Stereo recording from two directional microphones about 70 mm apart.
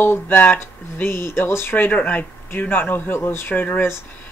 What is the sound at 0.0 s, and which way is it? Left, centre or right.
Speech, left.